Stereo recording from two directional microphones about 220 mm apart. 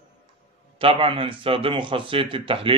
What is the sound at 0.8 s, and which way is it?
A man's voice, 25° right (ahead or behind).